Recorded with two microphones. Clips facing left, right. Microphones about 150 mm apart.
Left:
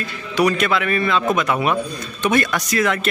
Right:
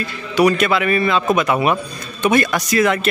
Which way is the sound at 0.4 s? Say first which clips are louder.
Right 3 dB; 5° right (ahead or behind).